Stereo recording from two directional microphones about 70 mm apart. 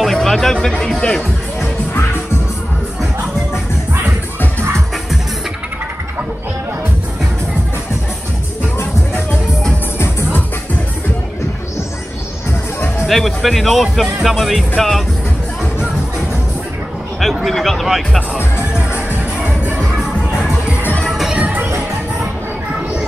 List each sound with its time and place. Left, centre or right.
0.0 s speech: centre
9.9 s music: left
13.0 s speech: centre
17.2 s music: centre
21.1 s music: centre
21.4 s music: right